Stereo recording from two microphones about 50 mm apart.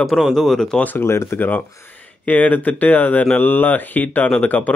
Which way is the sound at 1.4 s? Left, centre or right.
Left.